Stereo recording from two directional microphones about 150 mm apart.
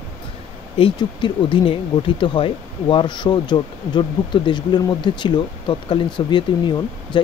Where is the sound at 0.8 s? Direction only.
30° left (ahead or behind).